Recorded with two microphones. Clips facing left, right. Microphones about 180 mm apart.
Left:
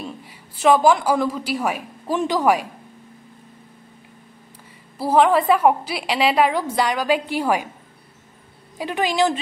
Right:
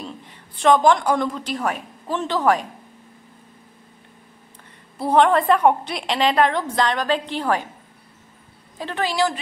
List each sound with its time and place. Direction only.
0.0 s a woman's voice: 5° left (ahead or behind)
4.9 s a woman's voice: 5° left (ahead or behind)
8.7 s a woman's voice: 15° left (ahead or behind)